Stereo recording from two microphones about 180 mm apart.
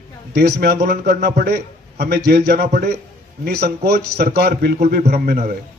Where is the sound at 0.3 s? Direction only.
60° right (ahead or behind).